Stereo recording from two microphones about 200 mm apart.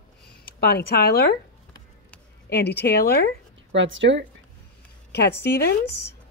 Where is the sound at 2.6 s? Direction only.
55° left (ahead or behind).